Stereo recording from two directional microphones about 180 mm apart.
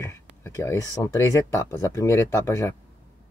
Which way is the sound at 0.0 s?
15° left (ahead or behind).